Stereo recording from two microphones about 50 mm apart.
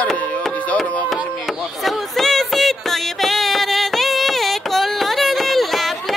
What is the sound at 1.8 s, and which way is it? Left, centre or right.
Music, centre.